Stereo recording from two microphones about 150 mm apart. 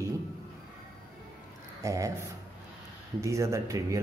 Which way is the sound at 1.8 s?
20° right (ahead or behind).